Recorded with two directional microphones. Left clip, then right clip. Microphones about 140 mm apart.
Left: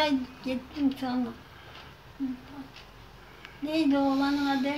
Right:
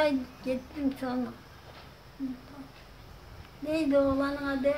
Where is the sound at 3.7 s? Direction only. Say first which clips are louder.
Even; 20° right (ahead or behind).